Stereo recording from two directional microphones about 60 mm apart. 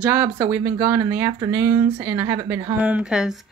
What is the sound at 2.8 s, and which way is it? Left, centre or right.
Speech, right.